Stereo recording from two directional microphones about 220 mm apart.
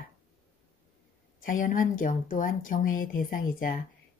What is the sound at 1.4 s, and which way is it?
Speech, 40° left (ahead or behind).